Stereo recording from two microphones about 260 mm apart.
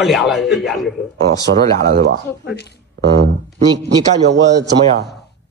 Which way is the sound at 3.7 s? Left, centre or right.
Right.